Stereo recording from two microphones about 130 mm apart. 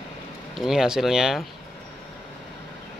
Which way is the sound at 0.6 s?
5° right (ahead or behind).